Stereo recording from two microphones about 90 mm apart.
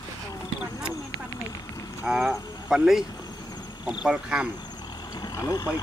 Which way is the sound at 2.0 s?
15° right (ahead or behind).